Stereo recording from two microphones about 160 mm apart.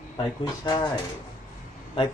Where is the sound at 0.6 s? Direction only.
30° left (ahead or behind).